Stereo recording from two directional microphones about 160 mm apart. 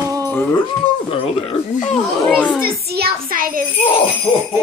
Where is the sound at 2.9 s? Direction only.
75° right (ahead or behind).